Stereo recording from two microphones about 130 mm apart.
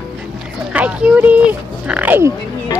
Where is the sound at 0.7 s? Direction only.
10° right (ahead or behind).